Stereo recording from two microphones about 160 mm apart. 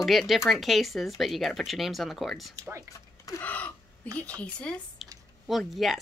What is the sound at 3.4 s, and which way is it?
Gasp, 10° left (ahead or behind).